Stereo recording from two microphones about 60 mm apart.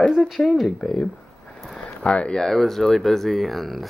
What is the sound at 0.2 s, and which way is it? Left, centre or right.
Speech, centre.